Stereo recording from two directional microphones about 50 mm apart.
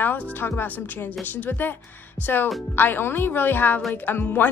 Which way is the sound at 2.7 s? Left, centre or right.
Left.